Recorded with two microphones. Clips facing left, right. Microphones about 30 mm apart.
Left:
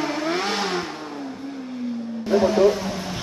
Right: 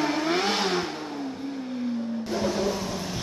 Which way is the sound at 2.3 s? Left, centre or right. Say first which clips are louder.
Left 11 dB; left.